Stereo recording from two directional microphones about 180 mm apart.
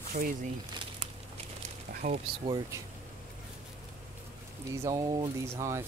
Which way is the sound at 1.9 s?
50° right (ahead or behind).